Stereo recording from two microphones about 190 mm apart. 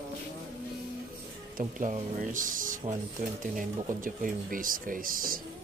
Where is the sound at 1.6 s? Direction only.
45° right (ahead or behind).